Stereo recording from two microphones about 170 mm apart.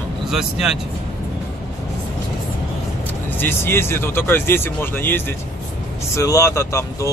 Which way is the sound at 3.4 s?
15° left (ahead or behind).